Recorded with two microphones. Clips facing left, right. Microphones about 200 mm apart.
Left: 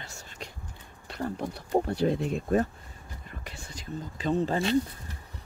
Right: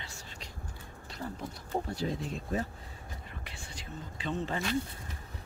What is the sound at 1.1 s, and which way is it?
Speech, 60° left (ahead or behind).